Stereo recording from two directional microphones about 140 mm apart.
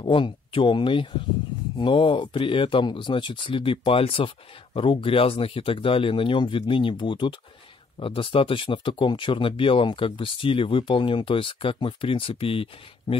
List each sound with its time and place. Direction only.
0.0 s speech: 35° left (ahead or behind)